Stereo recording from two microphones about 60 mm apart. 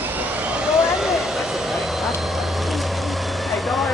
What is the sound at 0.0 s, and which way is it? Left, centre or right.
Vehicle, right.